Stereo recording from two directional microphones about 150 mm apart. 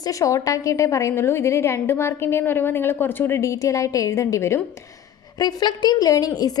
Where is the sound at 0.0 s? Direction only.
20° left (ahead or behind).